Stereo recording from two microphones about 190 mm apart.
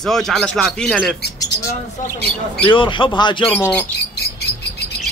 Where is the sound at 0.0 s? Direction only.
Centre (ahead or behind).